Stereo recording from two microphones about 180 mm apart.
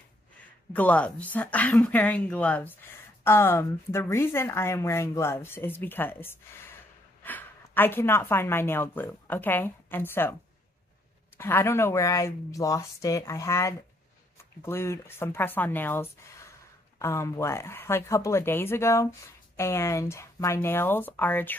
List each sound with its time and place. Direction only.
0.7 s a woman's voice: 10° left (ahead or behind)
11.3 s a woman's voice: 15° left (ahead or behind)